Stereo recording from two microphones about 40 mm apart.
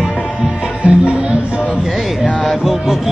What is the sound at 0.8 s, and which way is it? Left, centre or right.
Music, right.